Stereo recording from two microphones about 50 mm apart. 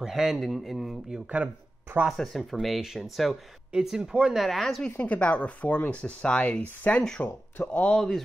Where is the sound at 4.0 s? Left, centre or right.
Centre.